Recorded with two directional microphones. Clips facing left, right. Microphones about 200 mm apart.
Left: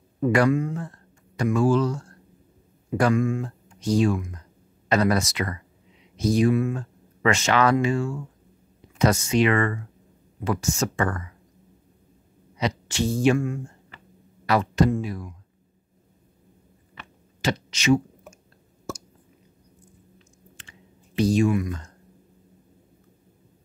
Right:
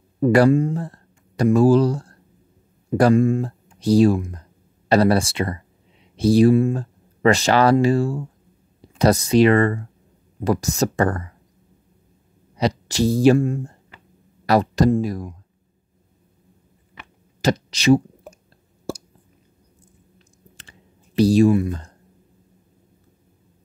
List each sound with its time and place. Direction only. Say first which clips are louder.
0.2 s speech: right 5 dB; 35° right (ahead or behind)
12.5 s speech: right 5 dB; 35° right (ahead or behind)
17.4 s clicking: right 6 dB; 40° right (ahead or behind)
18.9 s a sound: right 5 dB; 30° right (ahead or behind)
20.5 s clicking: left 1 dB; 35° right (ahead or behind)